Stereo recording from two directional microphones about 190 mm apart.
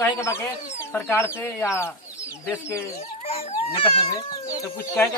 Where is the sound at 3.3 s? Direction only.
30° left (ahead or behind).